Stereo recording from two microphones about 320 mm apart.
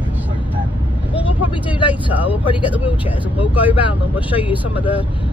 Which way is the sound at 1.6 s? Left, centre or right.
Centre.